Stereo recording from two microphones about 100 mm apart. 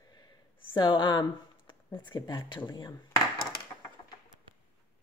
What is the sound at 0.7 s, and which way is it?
Speech, 50° left (ahead or behind).